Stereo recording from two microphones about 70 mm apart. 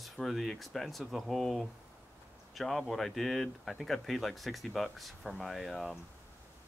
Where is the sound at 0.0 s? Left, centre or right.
Centre.